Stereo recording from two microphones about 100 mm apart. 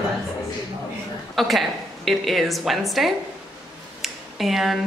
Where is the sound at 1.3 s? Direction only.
Centre (ahead or behind).